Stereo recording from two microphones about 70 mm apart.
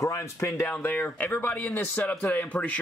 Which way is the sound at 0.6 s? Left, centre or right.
Left.